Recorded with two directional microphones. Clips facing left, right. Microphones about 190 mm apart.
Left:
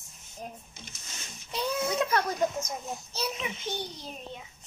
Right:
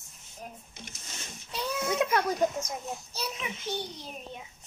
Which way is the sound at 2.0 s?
10° right (ahead or behind).